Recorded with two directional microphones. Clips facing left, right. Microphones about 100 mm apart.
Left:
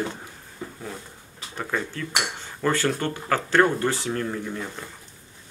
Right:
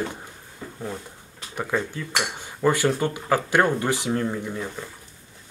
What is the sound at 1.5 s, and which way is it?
Speech, 15° right (ahead or behind).